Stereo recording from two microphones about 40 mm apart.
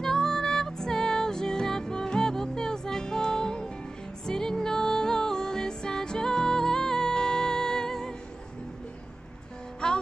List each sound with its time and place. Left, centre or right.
0.0 s music: centre
9.8 s music: centre